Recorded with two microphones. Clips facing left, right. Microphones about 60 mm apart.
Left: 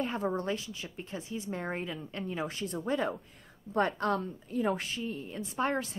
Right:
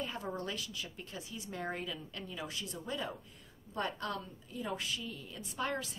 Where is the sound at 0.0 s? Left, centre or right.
Left.